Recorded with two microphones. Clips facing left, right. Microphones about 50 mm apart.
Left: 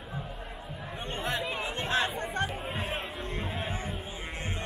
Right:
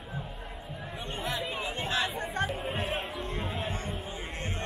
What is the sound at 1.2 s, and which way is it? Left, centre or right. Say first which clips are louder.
Chatter: left 1 dB; left.